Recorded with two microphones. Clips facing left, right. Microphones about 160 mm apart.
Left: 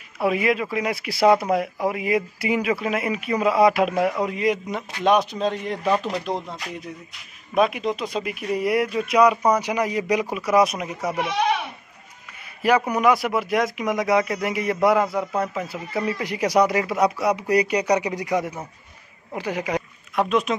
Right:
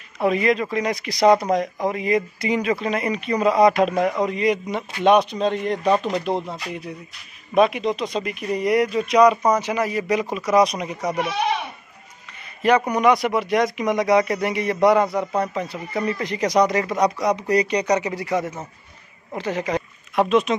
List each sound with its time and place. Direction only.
0.2 s speech: 5° left (ahead or behind)
12.6 s speech: 5° left (ahead or behind)
20.2 s speech: centre (ahead or behind)